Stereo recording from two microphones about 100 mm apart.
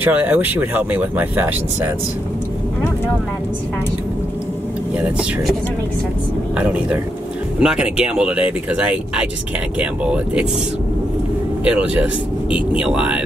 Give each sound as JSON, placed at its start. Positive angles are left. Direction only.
{"t": 0.0, "sound": "speech", "side_deg": -15}
{"t": 6.5, "sound": "speech", "side_deg": -15}
{"t": 11.6, "sound": "speech", "side_deg": -10}